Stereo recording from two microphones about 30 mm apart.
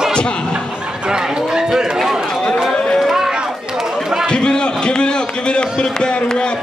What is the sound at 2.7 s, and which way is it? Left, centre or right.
Speech, left.